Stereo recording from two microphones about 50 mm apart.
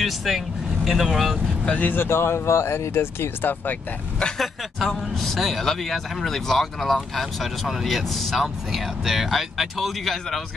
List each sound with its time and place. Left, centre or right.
0.0 s speech: centre
1.7 s speech: left
2.0 s speech: left
4.8 s speech: centre